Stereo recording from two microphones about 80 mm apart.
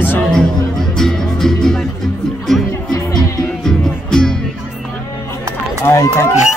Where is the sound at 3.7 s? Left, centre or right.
Centre.